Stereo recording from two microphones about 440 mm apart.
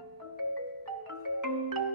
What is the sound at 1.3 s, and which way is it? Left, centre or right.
Marimba, right.